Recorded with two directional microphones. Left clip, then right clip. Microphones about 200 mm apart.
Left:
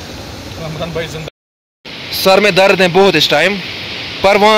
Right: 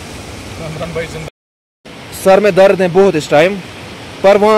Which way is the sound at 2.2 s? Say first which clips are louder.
Right 1 dB; centre (ahead or behind).